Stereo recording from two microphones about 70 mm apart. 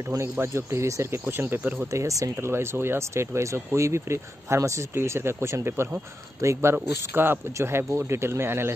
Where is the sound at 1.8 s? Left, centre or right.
Right.